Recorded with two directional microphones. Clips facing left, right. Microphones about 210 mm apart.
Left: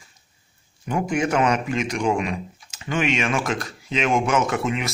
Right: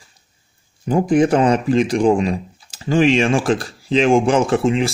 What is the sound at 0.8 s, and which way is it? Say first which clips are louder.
Speech: right 8 dB; 35° right (ahead or behind).